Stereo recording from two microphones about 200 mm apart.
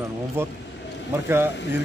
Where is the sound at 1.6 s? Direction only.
60° left (ahead or behind).